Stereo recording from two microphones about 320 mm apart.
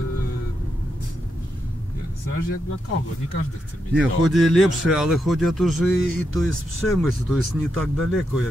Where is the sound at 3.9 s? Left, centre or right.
Centre.